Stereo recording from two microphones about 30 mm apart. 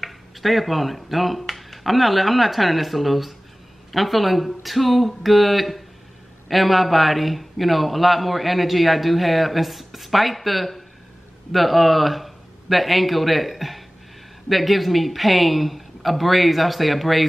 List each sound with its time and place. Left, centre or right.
0.0 s a man's voice: centre